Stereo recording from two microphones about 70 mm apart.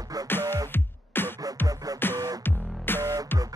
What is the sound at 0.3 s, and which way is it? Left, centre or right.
Music, left.